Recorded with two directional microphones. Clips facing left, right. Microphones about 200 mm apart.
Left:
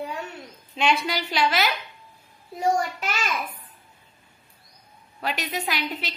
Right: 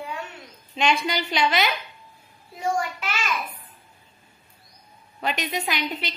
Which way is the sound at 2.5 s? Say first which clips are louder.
Left 3 dB; 40° left (ahead or behind).